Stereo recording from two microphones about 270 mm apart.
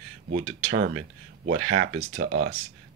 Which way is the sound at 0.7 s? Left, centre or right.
Right.